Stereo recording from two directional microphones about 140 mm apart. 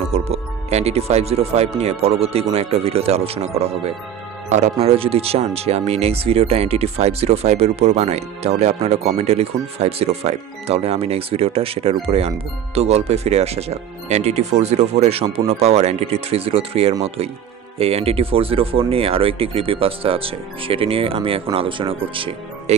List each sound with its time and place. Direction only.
0.1 s speech: 50° right (ahead or behind)